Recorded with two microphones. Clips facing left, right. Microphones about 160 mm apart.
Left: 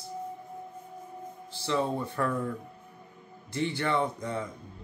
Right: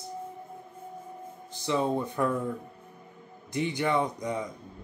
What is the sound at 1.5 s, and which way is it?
A man's voice, 15° right (ahead or behind).